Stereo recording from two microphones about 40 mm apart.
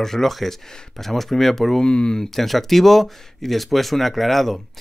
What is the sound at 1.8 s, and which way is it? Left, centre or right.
Speech, left.